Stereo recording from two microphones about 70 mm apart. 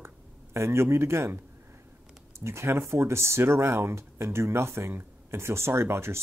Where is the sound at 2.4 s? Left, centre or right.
Right.